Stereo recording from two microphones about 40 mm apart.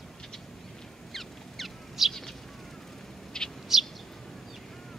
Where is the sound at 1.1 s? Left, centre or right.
Centre.